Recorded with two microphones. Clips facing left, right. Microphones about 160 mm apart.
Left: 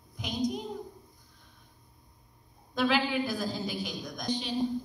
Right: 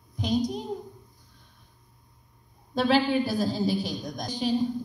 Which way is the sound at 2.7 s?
35° right (ahead or behind).